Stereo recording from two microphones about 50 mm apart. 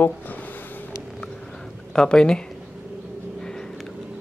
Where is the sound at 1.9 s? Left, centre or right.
Centre.